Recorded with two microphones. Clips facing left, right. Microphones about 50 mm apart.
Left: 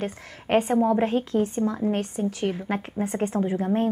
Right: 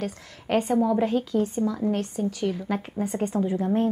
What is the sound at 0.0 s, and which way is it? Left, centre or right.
A woman's voice, left.